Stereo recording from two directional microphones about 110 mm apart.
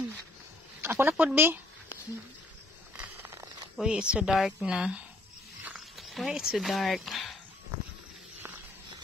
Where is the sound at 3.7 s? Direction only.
5° right (ahead or behind).